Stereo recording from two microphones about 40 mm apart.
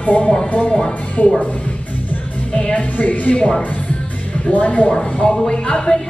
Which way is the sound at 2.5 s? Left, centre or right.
Left.